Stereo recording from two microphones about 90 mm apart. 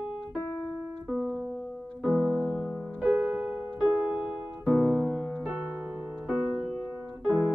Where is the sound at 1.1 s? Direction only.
10° left (ahead or behind).